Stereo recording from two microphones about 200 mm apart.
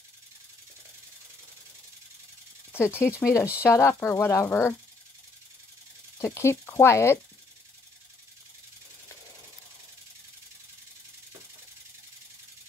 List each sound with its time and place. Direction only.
2.7 s speech: 10° left (ahead or behind)
6.1 s speech: 15° left (ahead or behind)